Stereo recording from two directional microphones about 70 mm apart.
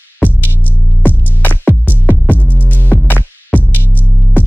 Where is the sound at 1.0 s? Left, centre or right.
Left.